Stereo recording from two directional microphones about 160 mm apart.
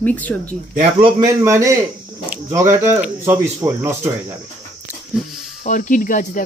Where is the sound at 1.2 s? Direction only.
20° right (ahead or behind).